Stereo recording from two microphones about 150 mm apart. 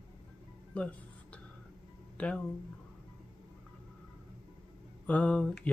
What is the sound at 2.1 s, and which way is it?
Speech, 10° left (ahead or behind).